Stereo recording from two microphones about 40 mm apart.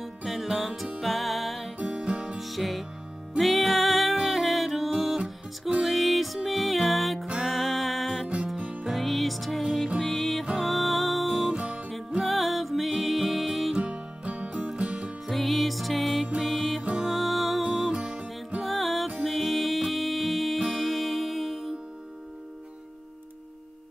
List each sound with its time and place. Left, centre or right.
0.0 s music: centre
1.9 s music: right
2.3 s music: centre
11.5 s music: right
12.2 s music: centre
13.7 s music: right
15.2 s music: centre